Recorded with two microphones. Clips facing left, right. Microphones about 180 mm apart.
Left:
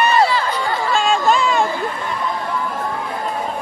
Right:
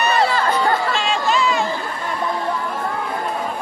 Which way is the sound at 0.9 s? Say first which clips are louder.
Left 4 dB; 50° left (ahead or behind).